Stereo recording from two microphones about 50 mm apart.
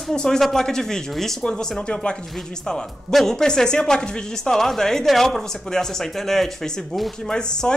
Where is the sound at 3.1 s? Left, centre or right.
Centre.